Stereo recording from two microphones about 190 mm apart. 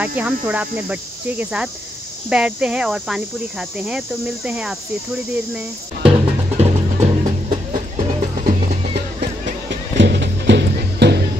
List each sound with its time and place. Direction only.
0.0 s speech: 10° right (ahead or behind)
6.5 s music: 35° right (ahead or behind)
9.7 s music: 60° right (ahead or behind)